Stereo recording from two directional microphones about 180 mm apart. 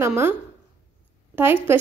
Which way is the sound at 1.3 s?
10° right (ahead or behind).